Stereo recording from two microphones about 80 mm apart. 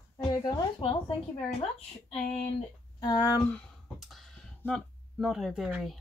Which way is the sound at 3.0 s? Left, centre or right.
Left.